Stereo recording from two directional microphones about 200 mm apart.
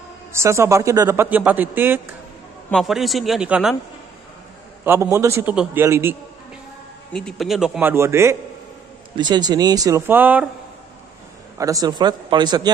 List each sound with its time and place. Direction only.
0.3 s a man's voice: 15° right (ahead or behind)
4.8 s a man's voice: 10° right (ahead or behind)
7.1 s a man's voice: 5° left (ahead or behind)
11.5 s speech: 15° right (ahead or behind)